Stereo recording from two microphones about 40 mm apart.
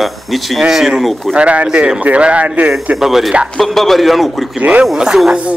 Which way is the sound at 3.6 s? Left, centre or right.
Centre.